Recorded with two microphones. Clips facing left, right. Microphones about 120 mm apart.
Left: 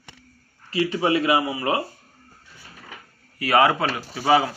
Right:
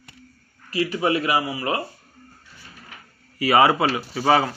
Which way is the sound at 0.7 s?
25° left (ahead or behind).